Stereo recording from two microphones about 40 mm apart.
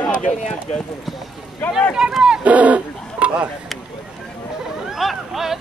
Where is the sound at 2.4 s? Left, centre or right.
Right.